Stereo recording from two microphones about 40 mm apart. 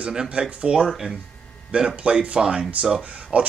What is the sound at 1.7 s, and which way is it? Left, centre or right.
Speech, right.